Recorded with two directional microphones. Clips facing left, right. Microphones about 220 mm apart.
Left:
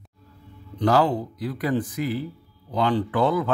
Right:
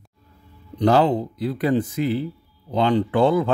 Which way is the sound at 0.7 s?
25° right (ahead or behind).